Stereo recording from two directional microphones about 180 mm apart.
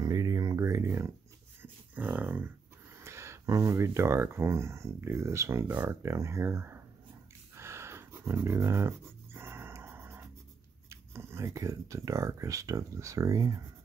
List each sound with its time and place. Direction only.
0.0 s a sound: 20° right (ahead or behind)
3.0 s speech: 15° right (ahead or behind)
7.5 s dog: 15° right (ahead or behind)
10.9 s speech: 15° right (ahead or behind)